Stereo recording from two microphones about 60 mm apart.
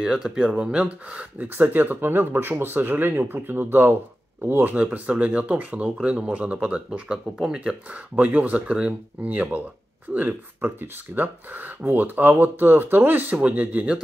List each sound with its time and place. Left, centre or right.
0.0 s speech: centre
1.4 s speech: right
4.8 s speech: right
7.9 s speech: right